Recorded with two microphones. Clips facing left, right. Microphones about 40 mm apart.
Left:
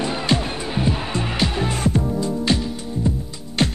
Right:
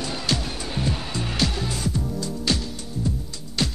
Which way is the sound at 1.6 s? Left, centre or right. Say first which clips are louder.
Left 6 dB; left.